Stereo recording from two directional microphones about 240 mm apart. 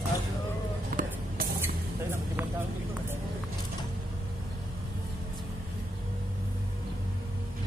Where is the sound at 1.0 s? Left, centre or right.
Right.